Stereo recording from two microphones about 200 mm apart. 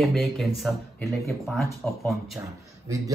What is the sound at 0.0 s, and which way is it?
Speech, centre (ahead or behind).